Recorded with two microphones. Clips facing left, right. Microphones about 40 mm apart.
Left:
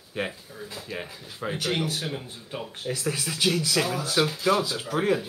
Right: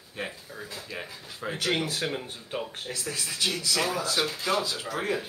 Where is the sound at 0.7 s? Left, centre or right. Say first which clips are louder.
Left 4 dB; centre.